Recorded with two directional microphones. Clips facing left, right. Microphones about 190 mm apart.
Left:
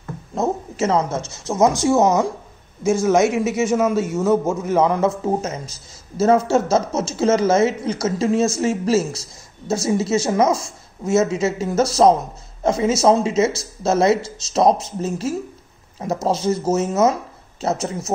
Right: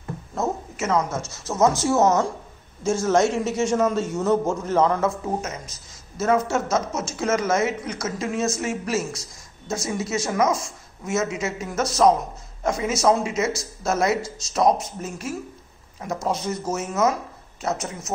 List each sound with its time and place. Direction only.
0.7 s a woman's voice: 30° left (ahead or behind)
1.5 s a man's voice: 15° left (ahead or behind)
5.2 s speech: 30° left (ahead or behind)